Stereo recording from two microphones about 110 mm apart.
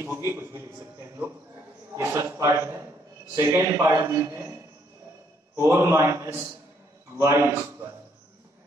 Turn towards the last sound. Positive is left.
turn(degrees=-25)  # may be behind; listen again after turning